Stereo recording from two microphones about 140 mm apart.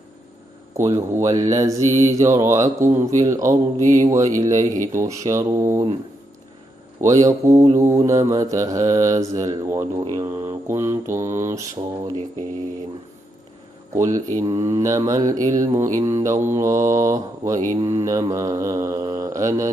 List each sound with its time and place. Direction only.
0.7 s mantra: 20° right (ahead or behind)
7.0 s mantra: 25° right (ahead or behind)
13.9 s mantra: 25° right (ahead or behind)